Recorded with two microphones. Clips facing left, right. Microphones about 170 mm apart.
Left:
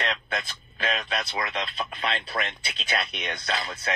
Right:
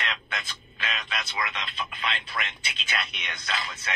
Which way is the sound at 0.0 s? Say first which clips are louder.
Left 5 dB; 35° left (ahead or behind).